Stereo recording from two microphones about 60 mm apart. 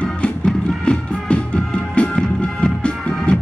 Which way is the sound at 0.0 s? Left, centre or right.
Centre.